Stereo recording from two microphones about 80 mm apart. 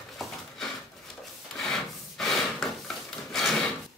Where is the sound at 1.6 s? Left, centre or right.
Centre.